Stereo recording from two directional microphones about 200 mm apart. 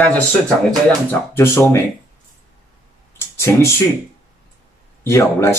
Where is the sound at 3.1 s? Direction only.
15° left (ahead or behind).